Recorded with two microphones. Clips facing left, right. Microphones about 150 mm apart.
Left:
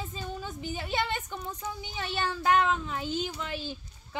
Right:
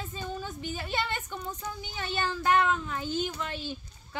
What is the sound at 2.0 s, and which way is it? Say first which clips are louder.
A woman's voice: even; 10° left (ahead or behind).